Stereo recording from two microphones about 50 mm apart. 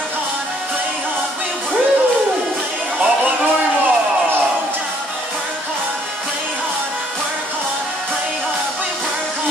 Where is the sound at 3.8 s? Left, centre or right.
Right.